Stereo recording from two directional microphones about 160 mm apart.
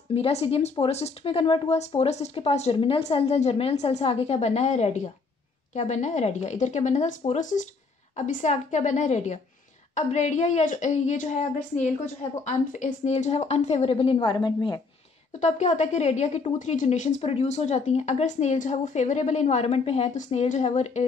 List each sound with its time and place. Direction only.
0.1 s a woman's voice: 40° left (ahead or behind)
15.3 s a woman's voice: 45° left (ahead or behind)